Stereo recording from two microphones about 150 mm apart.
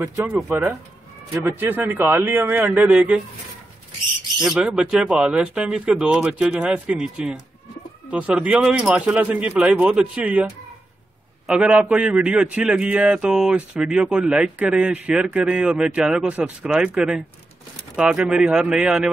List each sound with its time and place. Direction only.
0.0 s a man's voice: 15° right (ahead or behind)
4.4 s a man's voice: 5° right (ahead or behind)
11.4 s a man's voice: 5° right (ahead or behind)